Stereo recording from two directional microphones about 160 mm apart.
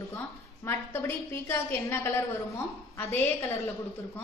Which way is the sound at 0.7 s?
15° left (ahead or behind).